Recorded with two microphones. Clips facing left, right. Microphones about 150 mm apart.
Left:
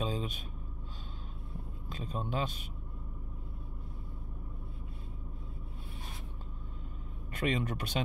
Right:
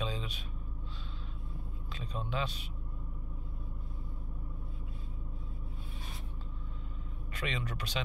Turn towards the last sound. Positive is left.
turn(degrees=50)  # may be behind; listen again after turning